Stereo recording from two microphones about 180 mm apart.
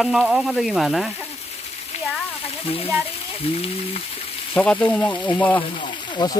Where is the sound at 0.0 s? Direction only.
Centre (ahead or behind).